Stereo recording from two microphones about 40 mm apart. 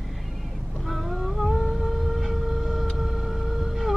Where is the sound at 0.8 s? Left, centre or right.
Centre.